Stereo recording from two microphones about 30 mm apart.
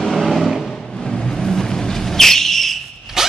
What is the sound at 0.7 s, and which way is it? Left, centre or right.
Vehicle, centre.